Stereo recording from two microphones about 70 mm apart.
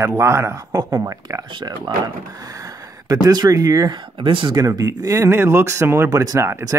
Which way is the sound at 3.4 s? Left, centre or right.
Right.